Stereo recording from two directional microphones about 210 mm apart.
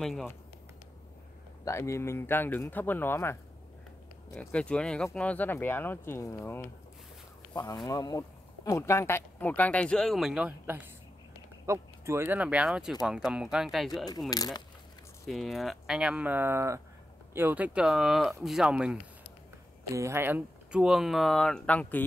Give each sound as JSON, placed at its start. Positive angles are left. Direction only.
{"t": 0.0, "sound": "speech", "side_deg": 0}
{"t": 1.6, "sound": "speech", "side_deg": 15}
{"t": 14.3, "sound": "speech", "side_deg": 20}
{"t": 15.2, "sound": "speech", "side_deg": 0}